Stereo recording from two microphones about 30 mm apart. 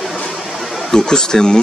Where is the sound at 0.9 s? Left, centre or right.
Left.